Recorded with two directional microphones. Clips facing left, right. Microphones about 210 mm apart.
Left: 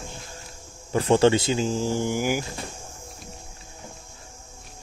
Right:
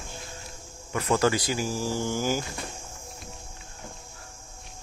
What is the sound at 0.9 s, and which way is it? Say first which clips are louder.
Speech: left 6 dB; 30° left (ahead or behind).